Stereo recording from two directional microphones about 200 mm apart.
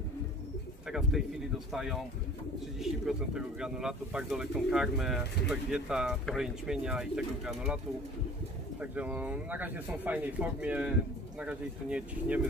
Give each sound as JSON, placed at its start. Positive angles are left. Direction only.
{"t": 0.8, "sound": "speech", "side_deg": 0}
{"t": 8.9, "sound": "speech", "side_deg": -5}